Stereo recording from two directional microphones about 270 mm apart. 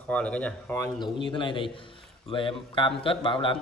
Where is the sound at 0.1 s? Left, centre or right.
Centre.